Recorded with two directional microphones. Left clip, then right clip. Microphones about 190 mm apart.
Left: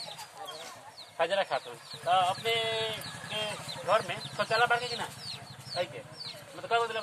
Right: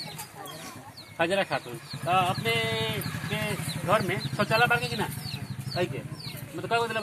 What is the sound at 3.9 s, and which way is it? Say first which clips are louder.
Speech: right 3 dB; 10° left (ahead or behind).